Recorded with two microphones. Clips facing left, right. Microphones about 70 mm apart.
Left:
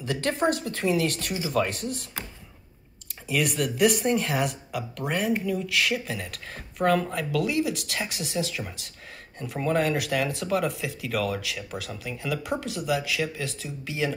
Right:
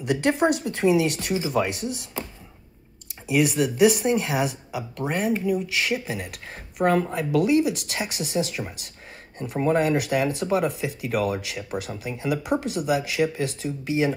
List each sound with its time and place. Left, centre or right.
0.0 s speech: centre
3.3 s speech: centre
5.4 s speech: centre